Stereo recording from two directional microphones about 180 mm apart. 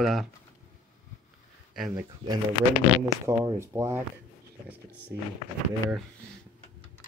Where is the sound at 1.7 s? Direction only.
Centre (ahead or behind).